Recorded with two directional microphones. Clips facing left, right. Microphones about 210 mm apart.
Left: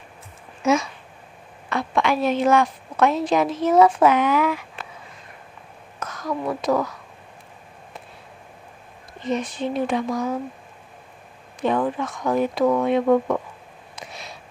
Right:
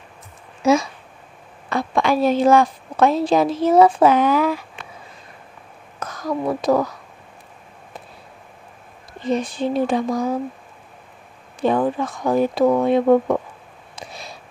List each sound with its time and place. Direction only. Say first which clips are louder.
0.6 s a woman's voice: right 3 dB; 35° right (ahead or behind)
5.9 s a woman's voice: right 3 dB; 35° right (ahead or behind)
9.2 s a woman's voice: right 3 dB; 35° right (ahead or behind)
11.6 s a woman's voice: right 3 dB; 35° right (ahead or behind)
13.9 s a sound: right 2 dB; 35° right (ahead or behind)